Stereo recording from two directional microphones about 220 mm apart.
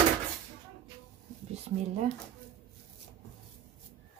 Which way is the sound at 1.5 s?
30° right (ahead or behind).